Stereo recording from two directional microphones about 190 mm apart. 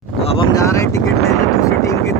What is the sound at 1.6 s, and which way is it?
Vehicle, 15° left (ahead or behind).